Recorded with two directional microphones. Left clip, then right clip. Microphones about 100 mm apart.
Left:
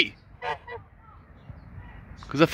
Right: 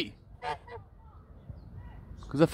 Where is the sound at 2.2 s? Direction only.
10° right (ahead or behind).